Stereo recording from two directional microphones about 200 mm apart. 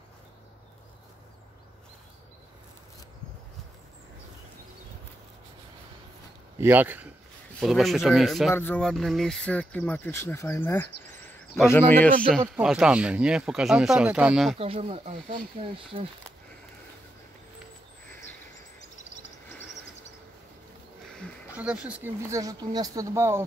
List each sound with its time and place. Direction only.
6.6 s speech: 10° right (ahead or behind)
14.6 s speech: 30° right (ahead or behind)
21.5 s speech: 5° right (ahead or behind)
22.3 s speech: 15° right (ahead or behind)